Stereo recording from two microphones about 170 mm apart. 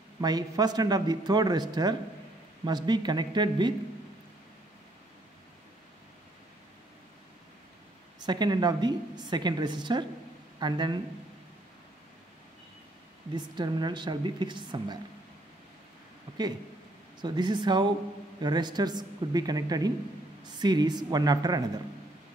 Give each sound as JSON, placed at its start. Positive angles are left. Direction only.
{"t": 0.2, "sound": "a man's voice", "side_deg": -20}
{"t": 8.3, "sound": "a man's voice", "side_deg": -25}
{"t": 13.3, "sound": "a man's voice", "side_deg": -25}
{"t": 17.2, "sound": "a man's voice", "side_deg": -25}